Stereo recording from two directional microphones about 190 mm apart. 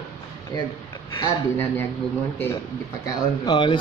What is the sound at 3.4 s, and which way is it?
Speech, 25° left (ahead or behind).